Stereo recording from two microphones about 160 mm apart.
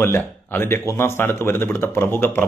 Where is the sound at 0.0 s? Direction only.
15° left (ahead or behind).